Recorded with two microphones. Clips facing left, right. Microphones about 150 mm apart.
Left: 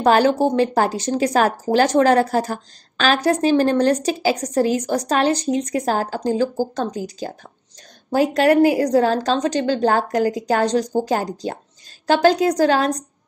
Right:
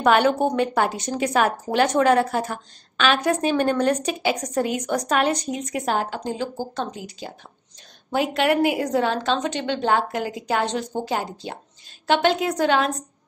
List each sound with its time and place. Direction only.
0.0 s speech: 35° left (ahead or behind)